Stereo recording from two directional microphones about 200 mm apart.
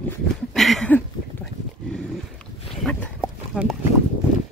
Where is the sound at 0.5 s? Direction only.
Centre (ahead or behind).